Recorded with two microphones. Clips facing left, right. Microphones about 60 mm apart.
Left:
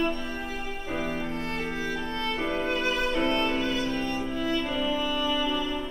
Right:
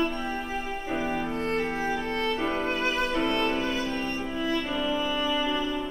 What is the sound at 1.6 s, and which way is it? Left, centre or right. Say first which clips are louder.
Music: right 3 dB; right.